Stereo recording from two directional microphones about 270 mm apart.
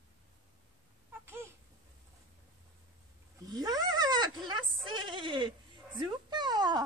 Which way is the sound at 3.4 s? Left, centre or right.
Centre.